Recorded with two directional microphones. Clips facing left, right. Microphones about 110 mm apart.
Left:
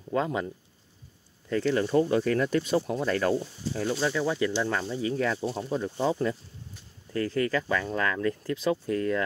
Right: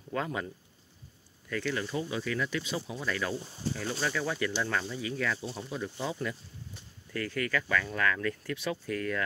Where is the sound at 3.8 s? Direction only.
25° left (ahead or behind).